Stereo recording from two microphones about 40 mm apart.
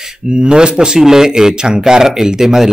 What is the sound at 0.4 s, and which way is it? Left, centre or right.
Speech, right.